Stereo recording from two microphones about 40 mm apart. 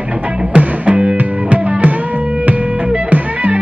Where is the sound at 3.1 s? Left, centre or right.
Right.